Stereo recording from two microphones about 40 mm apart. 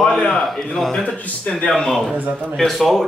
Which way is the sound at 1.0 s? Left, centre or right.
Left.